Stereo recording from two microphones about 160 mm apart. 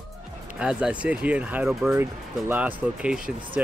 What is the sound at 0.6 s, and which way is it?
Speech, 5° right (ahead or behind).